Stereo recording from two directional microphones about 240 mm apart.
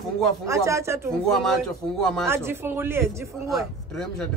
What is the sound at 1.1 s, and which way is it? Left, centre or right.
A man's voice, centre.